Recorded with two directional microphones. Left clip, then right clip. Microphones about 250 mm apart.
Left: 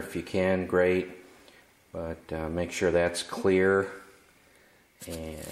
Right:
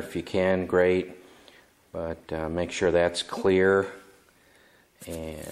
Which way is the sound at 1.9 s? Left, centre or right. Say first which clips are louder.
Right 3 dB; centre.